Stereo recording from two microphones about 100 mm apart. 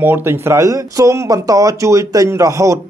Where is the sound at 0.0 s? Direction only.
20° right (ahead or behind).